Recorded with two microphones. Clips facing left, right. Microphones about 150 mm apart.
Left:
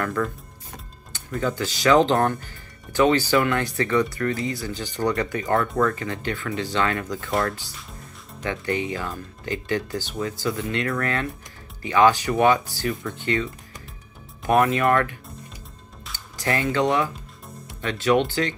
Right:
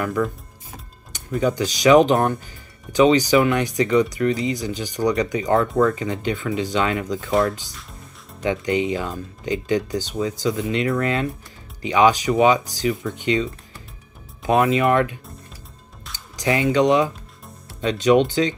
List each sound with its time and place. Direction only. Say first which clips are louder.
0.2 s speech: right 3 dB; 15° right (ahead or behind)
14.5 s speech: right 2 dB; 20° right (ahead or behind)
16.3 s speech: right 5 dB; 20° right (ahead or behind)